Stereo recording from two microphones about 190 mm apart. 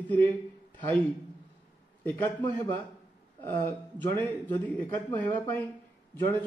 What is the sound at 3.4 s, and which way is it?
A man's voice, 10° left (ahead or behind).